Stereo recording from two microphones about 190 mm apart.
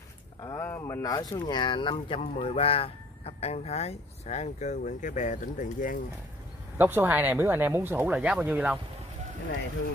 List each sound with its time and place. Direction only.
0.4 s speech: 15° left (ahead or behind); by 5.9 s 45° left (ahead or behind)
6.8 s speech: 10° right (ahead or behind)